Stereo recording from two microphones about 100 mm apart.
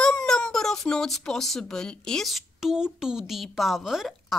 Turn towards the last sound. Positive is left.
turn(degrees=-5)  # may be behind; listen again after turning